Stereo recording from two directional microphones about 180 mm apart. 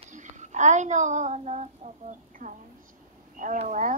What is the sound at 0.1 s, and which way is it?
Speech, 40° right (ahead or behind).